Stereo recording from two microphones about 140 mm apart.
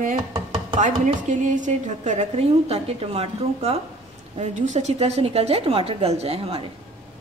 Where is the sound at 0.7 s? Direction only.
60° right (ahead or behind); by 3.7 s 45° right (ahead or behind).